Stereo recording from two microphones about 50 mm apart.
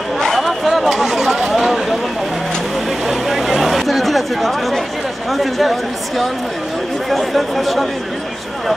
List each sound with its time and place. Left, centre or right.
0.2 s chatter: centre
1.4 s a sound: centre
3.1 s chatter: centre
5.3 s speech: centre